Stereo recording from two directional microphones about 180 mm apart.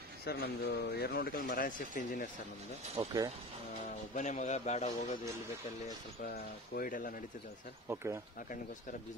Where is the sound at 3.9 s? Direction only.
40° left (ahead or behind).